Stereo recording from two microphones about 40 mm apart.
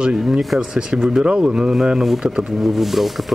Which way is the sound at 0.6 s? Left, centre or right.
Right.